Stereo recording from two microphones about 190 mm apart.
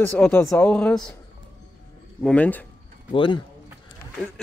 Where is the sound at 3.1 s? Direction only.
25° left (ahead or behind).